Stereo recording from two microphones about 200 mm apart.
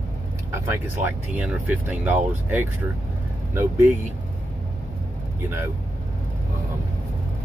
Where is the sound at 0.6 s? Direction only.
10° right (ahead or behind).